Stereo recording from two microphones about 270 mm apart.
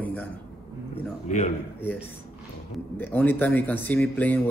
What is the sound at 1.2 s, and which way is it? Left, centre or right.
Speech, left.